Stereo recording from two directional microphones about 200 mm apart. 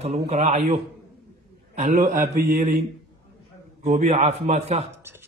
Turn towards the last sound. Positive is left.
turn(degrees=-10)  # may be behind; listen again after turning